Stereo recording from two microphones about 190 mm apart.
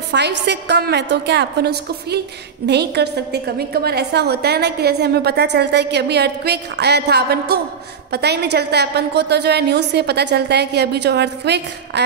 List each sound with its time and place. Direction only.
0.1 s a woman's voice: 65° right (ahead or behind)